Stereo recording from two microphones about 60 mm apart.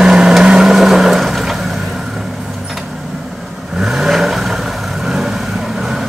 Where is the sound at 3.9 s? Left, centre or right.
Centre.